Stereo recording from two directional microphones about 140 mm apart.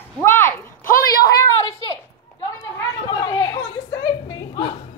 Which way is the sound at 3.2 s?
25° left (ahead or behind).